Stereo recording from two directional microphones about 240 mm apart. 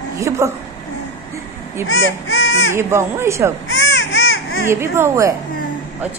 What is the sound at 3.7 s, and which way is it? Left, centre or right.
Baby cry, left.